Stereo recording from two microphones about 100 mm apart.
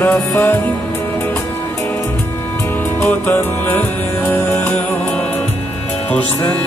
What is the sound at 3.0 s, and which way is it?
Music, 25° left (ahead or behind).